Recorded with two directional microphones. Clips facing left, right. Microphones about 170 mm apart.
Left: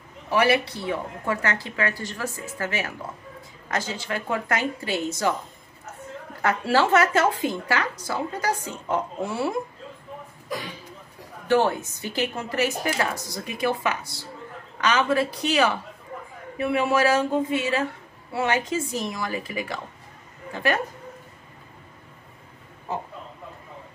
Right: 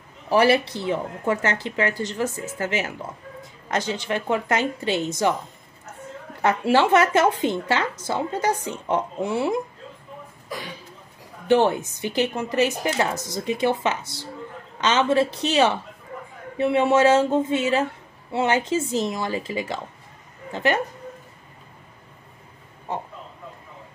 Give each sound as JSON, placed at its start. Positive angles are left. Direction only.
{"t": 0.3, "sound": "speech", "side_deg": -30}
{"t": 6.4, "sound": "speech", "side_deg": -20}
{"t": 11.4, "sound": "speech", "side_deg": -20}